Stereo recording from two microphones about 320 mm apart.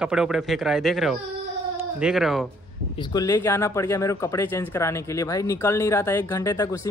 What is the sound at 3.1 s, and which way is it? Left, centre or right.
Speech, centre.